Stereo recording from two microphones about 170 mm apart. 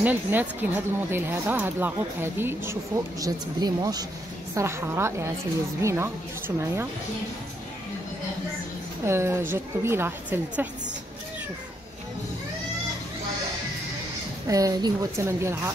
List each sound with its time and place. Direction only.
0.0 s speech: 10° right (ahead or behind)
9.0 s speech: 15° right (ahead or behind)
14.5 s a woman's voice: 20° right (ahead or behind)